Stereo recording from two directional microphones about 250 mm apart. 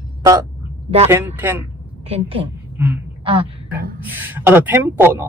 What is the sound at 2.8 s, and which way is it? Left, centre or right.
Speech, centre.